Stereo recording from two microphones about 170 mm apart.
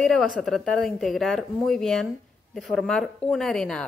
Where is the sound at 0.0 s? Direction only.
Centre (ahead or behind).